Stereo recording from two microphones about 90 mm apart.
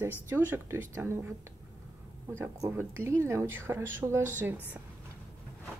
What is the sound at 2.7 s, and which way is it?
Speech, 30° right (ahead or behind).